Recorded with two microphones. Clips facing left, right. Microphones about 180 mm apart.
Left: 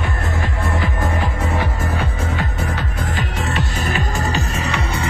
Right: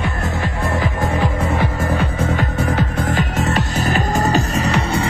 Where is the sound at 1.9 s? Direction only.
55° right (ahead or behind); by 5.1 s 35° right (ahead or behind).